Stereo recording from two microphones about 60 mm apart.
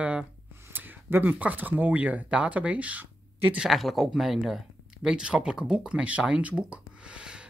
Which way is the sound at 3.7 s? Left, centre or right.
Centre.